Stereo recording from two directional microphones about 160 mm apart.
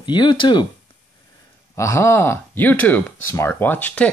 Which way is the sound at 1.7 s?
20° left (ahead or behind).